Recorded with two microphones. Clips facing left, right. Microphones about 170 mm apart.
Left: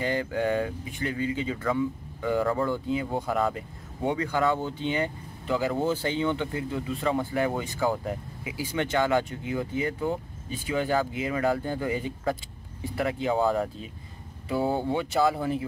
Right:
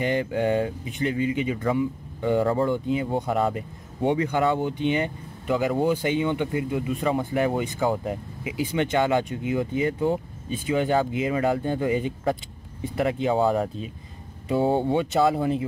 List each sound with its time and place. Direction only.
0.0 s speech: 20° right (ahead or behind)